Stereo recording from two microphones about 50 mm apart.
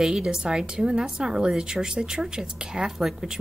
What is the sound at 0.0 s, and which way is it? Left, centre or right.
A woman's voice, centre.